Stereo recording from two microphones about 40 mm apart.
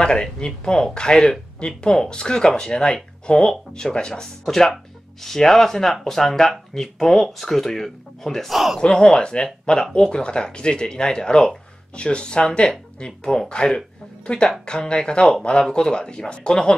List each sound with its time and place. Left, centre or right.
0.0 s speech: left; by 8.5 s centre
8.5 s a man's voice: centre
8.8 s speech: left